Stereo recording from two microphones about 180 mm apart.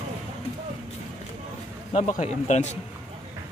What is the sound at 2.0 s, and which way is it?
Speech, 40° left (ahead or behind).